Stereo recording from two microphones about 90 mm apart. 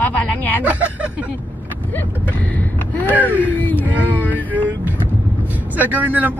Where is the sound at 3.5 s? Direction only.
20° left (ahead or behind).